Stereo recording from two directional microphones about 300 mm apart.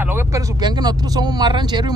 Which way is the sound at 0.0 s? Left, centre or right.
Centre.